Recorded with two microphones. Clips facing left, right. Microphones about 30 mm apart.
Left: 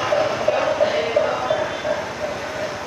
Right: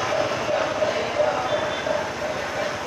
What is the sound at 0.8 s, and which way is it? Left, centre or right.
Music, centre.